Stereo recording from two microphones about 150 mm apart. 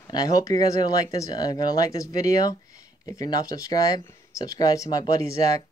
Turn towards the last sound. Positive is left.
turn(degrees=20)  # may be behind; listen again after turning